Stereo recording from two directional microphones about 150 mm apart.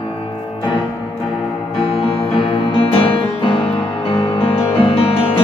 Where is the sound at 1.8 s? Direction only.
40° left (ahead or behind).